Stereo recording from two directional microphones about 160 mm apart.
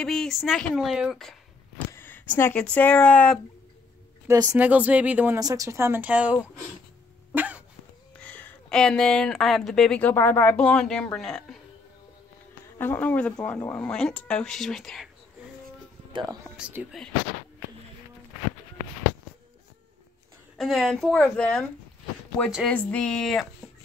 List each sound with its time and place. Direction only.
0.0 s speech: 5° left (ahead or behind)
1.9 s a sound: 15° left (ahead or behind)
2.3 s speech: 10° left (ahead or behind)
4.3 s speech: 20° right (ahead or behind)
4.6 s speech: 10° right (ahead or behind)
5.4 s speech: 20° right (ahead or behind)
7.3 s cough: 10° right (ahead or behind)
8.2 s speech: 10° left (ahead or behind)
12.7 s speech: 10° left (ahead or behind)
16.1 s speech: 30° right (ahead or behind)
16.4 s speech: 10° right (ahead or behind)
20.5 s speech: centre (ahead or behind)
22.7 s speech: 5° left (ahead or behind)